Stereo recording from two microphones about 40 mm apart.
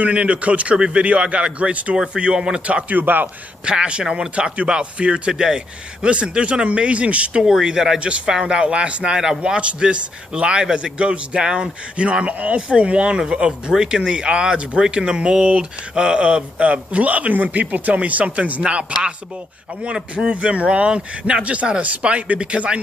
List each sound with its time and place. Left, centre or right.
0.0 s speech: right
0.7 s a man's voice: right
1.0 s speech: right
2.1 s a man's voice: right
2.6 s speech: right
3.0 s a man's voice: right
3.6 s a man's voice: right
7.6 s speech: centre
8.5 s a man's voice: right